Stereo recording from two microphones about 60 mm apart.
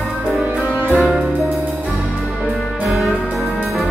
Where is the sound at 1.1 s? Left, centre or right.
Centre.